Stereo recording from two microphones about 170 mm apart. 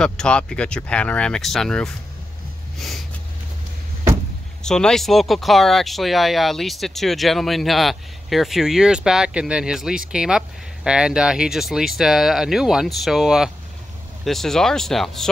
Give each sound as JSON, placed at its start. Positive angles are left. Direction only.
{"t": 0.0, "sound": "speech", "side_deg": 5}
{"t": 4.6, "sound": "speech", "side_deg": 5}